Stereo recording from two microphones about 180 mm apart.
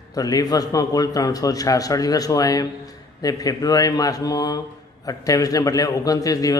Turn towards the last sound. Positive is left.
turn(degrees=20)  # may be behind; listen again after turning